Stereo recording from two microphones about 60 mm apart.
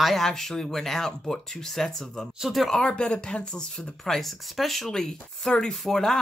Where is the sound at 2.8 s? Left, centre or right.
Centre.